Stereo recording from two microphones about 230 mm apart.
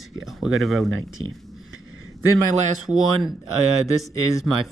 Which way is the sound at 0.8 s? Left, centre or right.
Right.